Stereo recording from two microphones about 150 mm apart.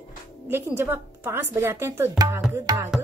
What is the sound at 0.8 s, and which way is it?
A woman's voice, 15° right (ahead or behind).